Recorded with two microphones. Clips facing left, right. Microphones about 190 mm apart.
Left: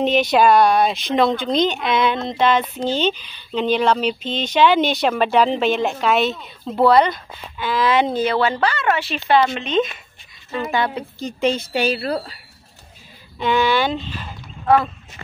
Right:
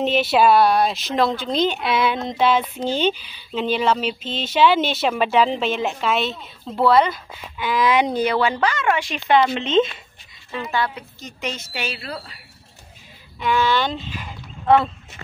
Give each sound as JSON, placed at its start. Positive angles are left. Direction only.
{"t": 0.0, "sound": "speech", "side_deg": -5}
{"t": 7.5, "sound": "speech", "side_deg": -15}
{"t": 11.0, "sound": "speech", "side_deg": 30}
{"t": 13.4, "sound": "speech", "side_deg": 20}
{"t": 14.0, "sound": "speech", "side_deg": -10}